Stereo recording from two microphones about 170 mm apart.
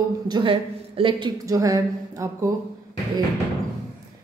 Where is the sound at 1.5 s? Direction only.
20° right (ahead or behind).